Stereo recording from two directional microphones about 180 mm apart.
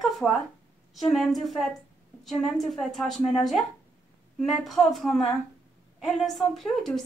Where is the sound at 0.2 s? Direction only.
5° left (ahead or behind).